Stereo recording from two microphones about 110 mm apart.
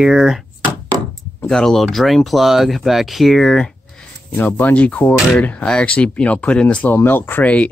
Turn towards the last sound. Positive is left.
turn(degrees=15)  # may be behind; listen again after turning